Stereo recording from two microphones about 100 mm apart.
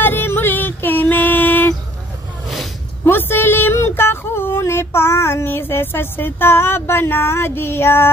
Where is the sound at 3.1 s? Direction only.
20° left (ahead or behind).